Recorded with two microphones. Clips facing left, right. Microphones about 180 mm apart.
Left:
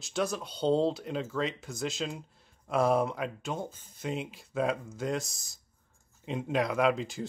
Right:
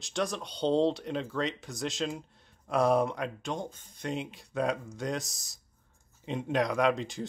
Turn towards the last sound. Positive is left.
turn(degrees=0)  # may be behind; listen again after turning